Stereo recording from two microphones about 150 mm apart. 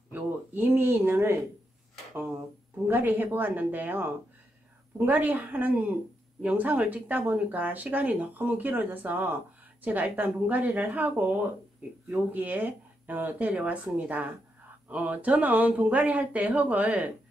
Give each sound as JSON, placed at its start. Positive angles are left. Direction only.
{"t": 0.1, "sound": "speech", "side_deg": -10}
{"t": 2.9, "sound": "speech", "side_deg": -10}